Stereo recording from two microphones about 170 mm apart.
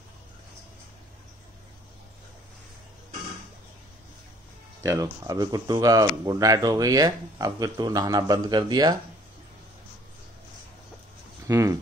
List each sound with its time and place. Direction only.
4.8 s speech: 20° right (ahead or behind)
11.4 s speech: 15° right (ahead or behind)